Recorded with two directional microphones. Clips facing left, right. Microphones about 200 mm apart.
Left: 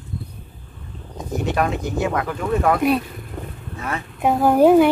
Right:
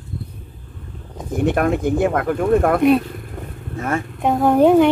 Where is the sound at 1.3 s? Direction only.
50° right (ahead or behind).